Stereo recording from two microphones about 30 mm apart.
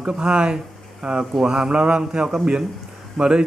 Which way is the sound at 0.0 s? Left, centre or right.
Right.